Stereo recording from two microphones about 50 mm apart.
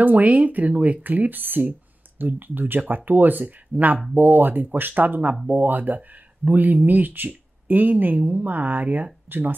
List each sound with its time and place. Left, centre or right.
0.0 s speech: right